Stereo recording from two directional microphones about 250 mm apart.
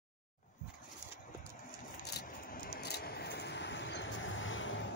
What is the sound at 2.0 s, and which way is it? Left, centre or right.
Vehicle, left.